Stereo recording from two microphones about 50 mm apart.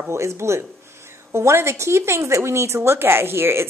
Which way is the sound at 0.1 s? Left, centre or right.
Right.